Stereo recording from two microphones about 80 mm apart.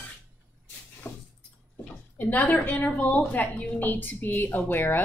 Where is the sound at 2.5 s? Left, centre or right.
Left.